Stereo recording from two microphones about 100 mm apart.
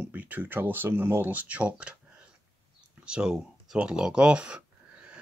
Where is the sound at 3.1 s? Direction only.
10° right (ahead or behind).